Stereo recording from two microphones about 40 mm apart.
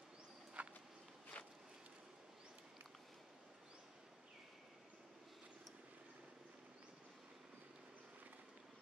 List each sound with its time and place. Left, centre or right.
0.6 s walk: right
1.3 s walk: left